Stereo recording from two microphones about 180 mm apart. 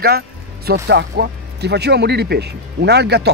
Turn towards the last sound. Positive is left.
turn(degrees=-65)  # may be behind; listen again after turning